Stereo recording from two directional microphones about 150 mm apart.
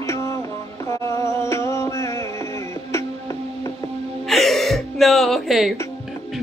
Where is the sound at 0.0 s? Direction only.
20° left (ahead or behind).